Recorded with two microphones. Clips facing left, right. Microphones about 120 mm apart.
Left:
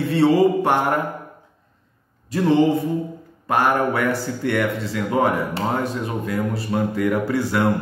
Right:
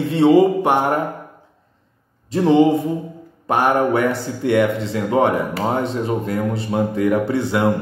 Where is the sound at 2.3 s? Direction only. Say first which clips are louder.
Right 3 dB; 20° right (ahead or behind).